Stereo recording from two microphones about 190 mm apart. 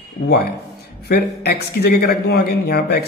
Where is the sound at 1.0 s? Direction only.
55° left (ahead or behind).